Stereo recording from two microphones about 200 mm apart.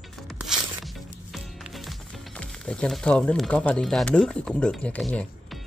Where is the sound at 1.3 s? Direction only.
Centre (ahead or behind).